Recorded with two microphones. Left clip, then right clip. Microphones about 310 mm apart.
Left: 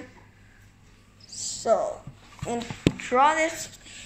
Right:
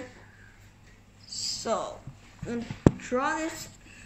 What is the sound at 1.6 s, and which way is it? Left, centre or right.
Speech, left.